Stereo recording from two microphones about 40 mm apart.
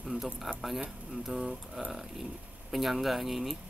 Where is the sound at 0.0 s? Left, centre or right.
Centre.